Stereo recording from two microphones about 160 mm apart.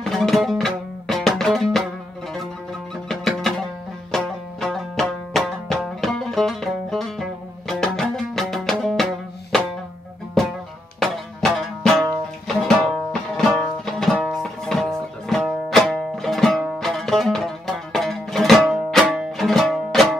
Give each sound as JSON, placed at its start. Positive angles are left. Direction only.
{"t": 0.0, "sound": "music", "side_deg": 0}
{"t": 3.1, "sound": "music", "side_deg": 0}
{"t": 11.0, "sound": "music", "side_deg": 0}